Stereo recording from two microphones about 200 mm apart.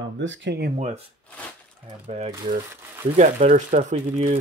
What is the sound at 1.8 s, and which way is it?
Speech, 30° right (ahead or behind).